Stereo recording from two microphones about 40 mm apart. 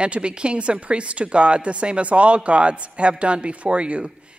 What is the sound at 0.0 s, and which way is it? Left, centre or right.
A woman's voice, right.